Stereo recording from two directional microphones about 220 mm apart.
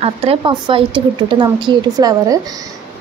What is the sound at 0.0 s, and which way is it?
A woman's voice, 25° right (ahead or behind).